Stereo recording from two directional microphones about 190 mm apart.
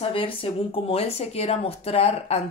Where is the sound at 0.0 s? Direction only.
30° left (ahead or behind).